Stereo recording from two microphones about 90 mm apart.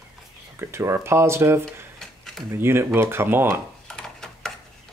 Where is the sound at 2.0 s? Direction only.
5° left (ahead or behind).